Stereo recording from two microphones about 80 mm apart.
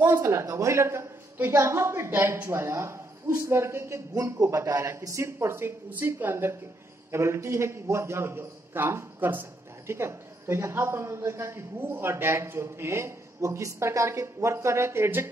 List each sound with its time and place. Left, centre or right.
0.2 s a man's voice: right